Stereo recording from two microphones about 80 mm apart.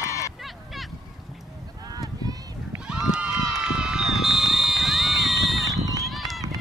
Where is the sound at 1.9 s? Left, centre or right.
Right.